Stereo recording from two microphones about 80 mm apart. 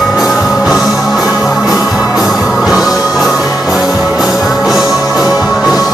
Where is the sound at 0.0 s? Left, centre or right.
Centre.